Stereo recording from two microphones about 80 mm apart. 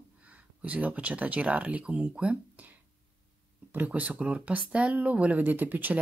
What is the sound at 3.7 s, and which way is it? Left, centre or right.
Speech, centre.